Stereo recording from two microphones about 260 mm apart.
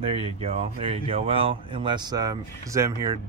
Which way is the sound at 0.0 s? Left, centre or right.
Right.